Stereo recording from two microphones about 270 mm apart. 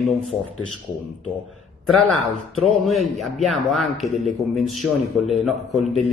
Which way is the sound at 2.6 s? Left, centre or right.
Centre.